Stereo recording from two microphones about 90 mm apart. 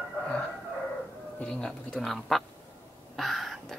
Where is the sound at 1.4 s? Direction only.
10° left (ahead or behind).